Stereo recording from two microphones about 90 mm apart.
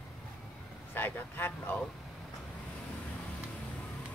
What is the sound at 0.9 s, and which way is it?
Speech, 20° left (ahead or behind).